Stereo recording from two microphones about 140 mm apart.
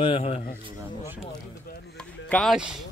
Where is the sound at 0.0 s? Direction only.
40° left (ahead or behind).